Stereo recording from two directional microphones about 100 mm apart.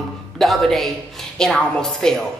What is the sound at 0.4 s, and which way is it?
A woman's voice, 5° left (ahead or behind).